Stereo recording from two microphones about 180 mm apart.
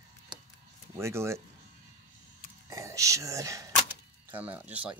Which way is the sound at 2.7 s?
15° right (ahead or behind).